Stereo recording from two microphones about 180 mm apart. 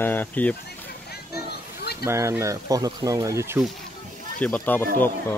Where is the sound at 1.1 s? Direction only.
60° left (ahead or behind).